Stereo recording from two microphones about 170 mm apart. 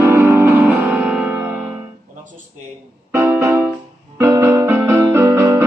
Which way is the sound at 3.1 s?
20° right (ahead or behind).